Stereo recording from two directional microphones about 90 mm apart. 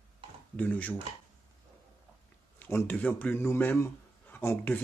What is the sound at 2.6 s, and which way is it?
A man's voice, 20° left (ahead or behind).